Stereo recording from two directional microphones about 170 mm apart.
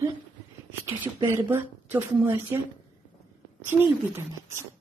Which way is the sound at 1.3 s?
10° right (ahead or behind).